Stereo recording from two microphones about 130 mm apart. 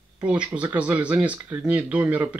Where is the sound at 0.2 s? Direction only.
10° right (ahead or behind).